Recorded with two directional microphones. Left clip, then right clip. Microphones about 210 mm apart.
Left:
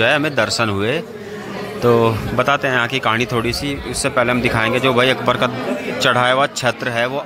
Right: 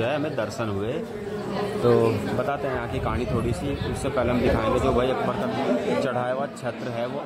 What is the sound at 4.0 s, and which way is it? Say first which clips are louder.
A man's voice: left 8 dB; 5° left (ahead or behind).